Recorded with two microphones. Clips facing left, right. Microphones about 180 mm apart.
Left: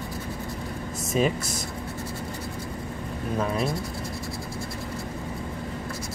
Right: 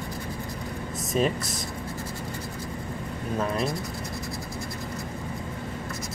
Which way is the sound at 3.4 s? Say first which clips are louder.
Left 1 dB; centre (ahead or behind).